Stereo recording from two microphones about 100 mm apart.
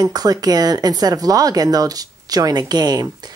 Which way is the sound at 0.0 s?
40° right (ahead or behind).